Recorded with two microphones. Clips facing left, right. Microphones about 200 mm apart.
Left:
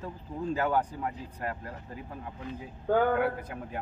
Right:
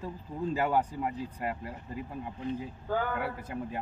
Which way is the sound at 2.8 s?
55° left (ahead or behind).